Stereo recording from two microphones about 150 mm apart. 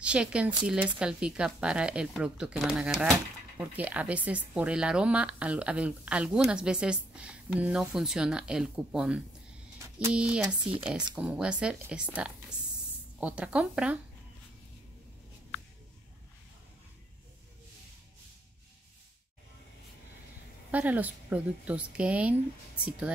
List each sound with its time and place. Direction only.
0.0 s speech: 5° right (ahead or behind)
20.7 s speech: 10° right (ahead or behind)